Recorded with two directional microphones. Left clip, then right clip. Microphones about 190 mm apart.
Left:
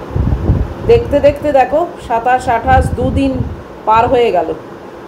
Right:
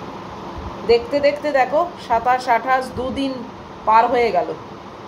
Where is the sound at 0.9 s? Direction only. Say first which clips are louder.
Left 7 dB; 5° left (ahead or behind).